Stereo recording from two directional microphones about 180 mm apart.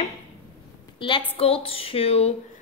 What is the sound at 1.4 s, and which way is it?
Speech, 30° left (ahead or behind).